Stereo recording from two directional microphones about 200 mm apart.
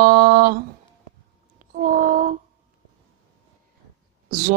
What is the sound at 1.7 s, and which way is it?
Child singing, 45° right (ahead or behind).